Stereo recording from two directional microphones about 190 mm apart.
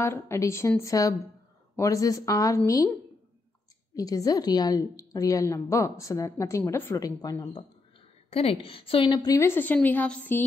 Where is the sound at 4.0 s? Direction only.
20° left (ahead or behind).